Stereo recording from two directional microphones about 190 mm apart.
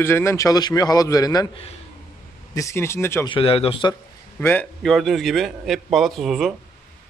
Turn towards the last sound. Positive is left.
turn(degrees=0)  # may be behind; listen again after turning